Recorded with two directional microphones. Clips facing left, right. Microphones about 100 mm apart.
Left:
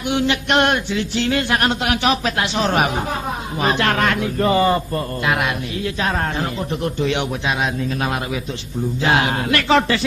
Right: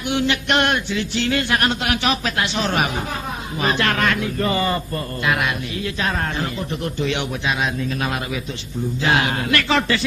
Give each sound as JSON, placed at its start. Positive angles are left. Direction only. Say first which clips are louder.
{"t": 0.1, "sound": "speech", "louder": "left 2 dB", "side_deg": 20}